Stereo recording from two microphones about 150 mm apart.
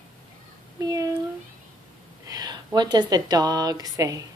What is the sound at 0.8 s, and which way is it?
Speech, 20° right (ahead or behind).